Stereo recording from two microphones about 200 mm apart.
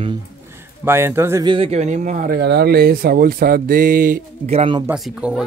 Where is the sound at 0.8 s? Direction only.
10° right (ahead or behind).